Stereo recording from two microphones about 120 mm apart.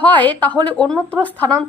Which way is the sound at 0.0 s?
15° left (ahead or behind).